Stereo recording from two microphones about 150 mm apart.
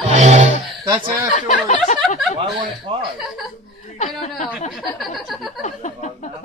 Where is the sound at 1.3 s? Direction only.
55° left (ahead or behind).